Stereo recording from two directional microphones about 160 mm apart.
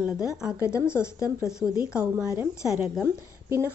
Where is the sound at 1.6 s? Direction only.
5° right (ahead or behind).